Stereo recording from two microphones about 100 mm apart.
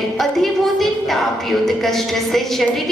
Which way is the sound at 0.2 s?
Centre (ahead or behind).